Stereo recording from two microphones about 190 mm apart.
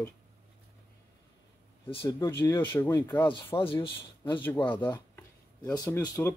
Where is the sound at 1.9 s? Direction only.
25° left (ahead or behind).